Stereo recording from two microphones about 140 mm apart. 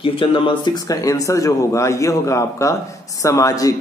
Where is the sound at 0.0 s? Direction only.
40° left (ahead or behind).